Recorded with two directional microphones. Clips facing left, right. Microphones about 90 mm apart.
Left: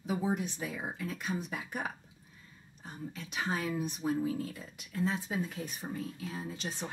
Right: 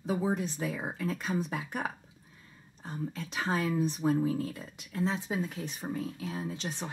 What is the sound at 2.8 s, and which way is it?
Speech, 35° right (ahead or behind).